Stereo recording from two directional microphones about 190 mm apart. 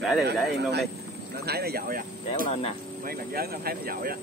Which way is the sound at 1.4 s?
55° right (ahead or behind).